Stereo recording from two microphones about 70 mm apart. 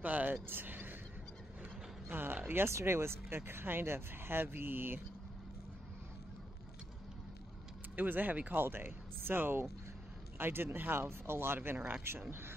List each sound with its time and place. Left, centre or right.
0.0 s speech: right
7.9 s speech: right